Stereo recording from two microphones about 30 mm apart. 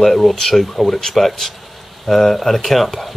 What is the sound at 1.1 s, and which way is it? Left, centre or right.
Speech, centre.